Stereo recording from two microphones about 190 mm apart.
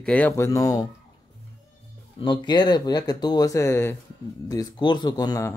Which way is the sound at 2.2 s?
25° left (ahead or behind).